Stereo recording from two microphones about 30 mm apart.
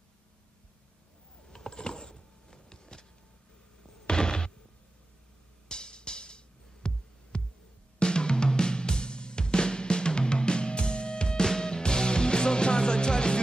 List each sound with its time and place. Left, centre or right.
1.5 s a sound: left
4.1 s slam: left
5.7 s music: left
7.3 s heart sounds: left
8.0 s music: left